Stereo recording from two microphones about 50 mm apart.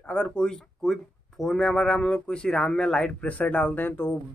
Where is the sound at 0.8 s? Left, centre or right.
Centre; by 3.9 s left.